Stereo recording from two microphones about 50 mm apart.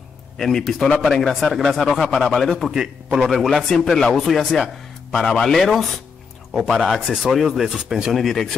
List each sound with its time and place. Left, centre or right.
0.4 s speech: centre
2.7 s a man's voice: centre
3.2 s speech: centre